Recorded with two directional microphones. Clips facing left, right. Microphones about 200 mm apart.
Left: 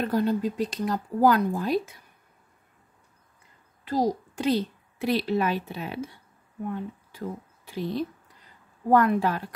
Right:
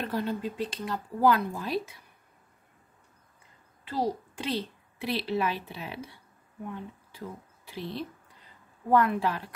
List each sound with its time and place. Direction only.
0.0 s speech: 40° left (ahead or behind)
3.8 s a woman's voice: 40° left (ahead or behind)
7.2 s speech: 45° left (ahead or behind)